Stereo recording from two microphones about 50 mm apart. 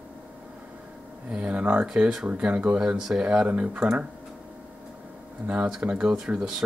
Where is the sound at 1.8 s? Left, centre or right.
Centre.